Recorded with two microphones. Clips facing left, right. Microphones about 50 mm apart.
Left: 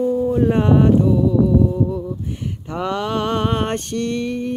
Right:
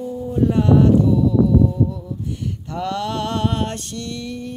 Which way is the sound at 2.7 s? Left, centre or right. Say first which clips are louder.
Left 2 dB; left.